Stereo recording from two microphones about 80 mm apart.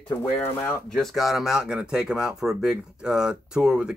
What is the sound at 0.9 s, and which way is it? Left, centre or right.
Speech, centre.